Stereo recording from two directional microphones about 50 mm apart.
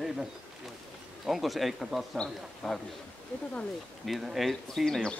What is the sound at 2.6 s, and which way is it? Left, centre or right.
Speech, centre.